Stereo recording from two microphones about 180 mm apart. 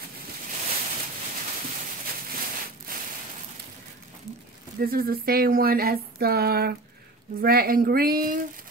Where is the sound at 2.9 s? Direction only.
50° right (ahead or behind).